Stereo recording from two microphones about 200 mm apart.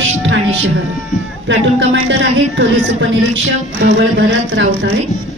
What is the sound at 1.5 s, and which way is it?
A woman's voice, 70° right (ahead or behind).